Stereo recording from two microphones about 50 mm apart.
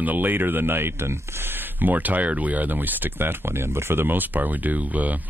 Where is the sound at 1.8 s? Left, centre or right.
Right.